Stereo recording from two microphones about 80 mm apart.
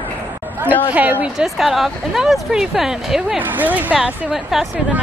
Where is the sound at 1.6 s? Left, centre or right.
Centre.